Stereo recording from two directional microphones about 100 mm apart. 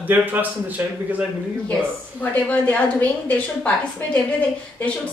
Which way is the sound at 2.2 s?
15° left (ahead or behind).